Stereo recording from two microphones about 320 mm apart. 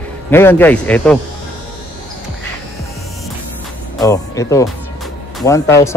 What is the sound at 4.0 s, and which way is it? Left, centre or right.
Speech, centre.